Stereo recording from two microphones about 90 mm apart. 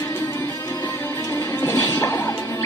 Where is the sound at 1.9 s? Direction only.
35° left (ahead or behind).